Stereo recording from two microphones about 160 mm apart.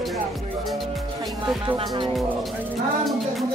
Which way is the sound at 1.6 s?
30° right (ahead or behind).